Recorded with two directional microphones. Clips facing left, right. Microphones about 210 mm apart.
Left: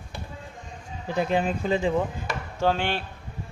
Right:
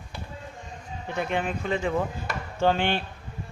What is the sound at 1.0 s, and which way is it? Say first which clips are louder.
Speech: left 4 dB; 35° left (ahead or behind).